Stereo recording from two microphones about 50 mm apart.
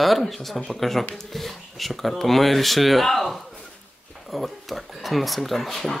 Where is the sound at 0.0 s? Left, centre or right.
Centre.